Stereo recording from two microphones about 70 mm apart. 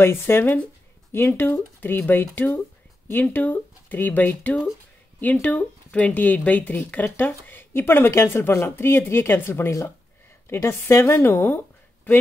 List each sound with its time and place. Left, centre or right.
0.0 s speech: left